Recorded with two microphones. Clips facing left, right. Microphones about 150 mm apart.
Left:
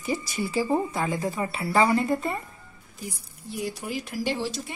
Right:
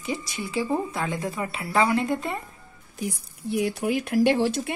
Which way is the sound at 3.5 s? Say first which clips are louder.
Right 7 dB; 65° right (ahead or behind).